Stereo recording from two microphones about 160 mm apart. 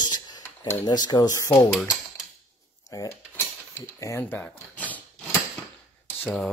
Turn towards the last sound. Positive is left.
turn(degrees=5)  # may be behind; listen again after turning